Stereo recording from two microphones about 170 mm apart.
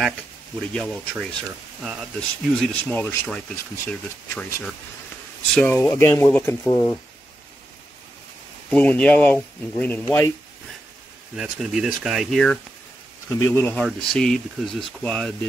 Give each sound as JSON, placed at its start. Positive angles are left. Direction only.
{"t": 0.6, "sound": "speech", "side_deg": 5}
{"t": 8.6, "sound": "speech", "side_deg": 10}
{"t": 11.3, "sound": "speech", "side_deg": 0}
{"t": 13.4, "sound": "speech", "side_deg": 15}